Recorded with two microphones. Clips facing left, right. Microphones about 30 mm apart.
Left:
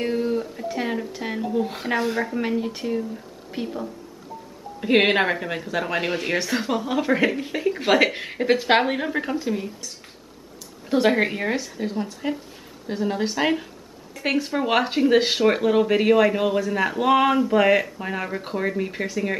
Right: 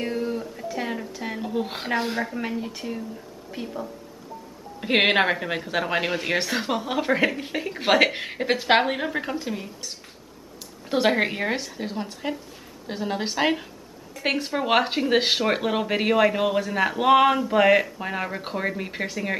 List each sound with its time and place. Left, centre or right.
0.0 s a sound: centre
0.7 s speech: centre
1.4 s speech: centre
2.1 s a woman's voice: centre
4.7 s speech: centre
6.0 s a woman's voice: centre
6.3 s a woman's voice: centre
10.9 s speech: centre